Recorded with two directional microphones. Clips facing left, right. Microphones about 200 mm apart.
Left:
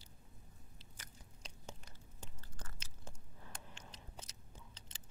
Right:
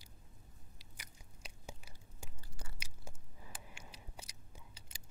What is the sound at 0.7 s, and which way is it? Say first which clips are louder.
Biting: left 1 dB; 10° right (ahead or behind).